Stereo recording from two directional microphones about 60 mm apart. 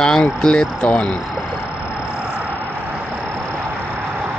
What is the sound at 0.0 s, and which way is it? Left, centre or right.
Speech, centre.